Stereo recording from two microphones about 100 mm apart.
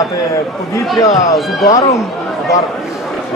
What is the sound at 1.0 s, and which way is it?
Speech, 35° left (ahead or behind).